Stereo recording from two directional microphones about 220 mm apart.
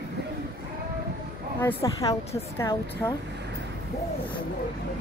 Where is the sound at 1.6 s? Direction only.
15° left (ahead or behind).